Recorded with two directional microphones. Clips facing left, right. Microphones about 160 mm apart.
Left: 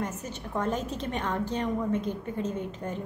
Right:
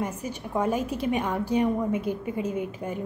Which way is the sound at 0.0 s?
10° right (ahead or behind).